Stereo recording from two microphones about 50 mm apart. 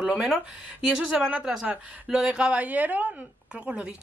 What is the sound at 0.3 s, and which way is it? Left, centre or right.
Speech, centre.